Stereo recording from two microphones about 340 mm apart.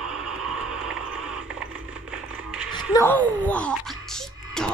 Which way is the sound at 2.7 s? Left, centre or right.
Centre.